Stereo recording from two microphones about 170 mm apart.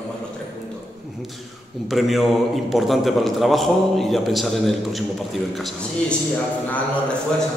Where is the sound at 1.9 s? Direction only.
Centre (ahead or behind).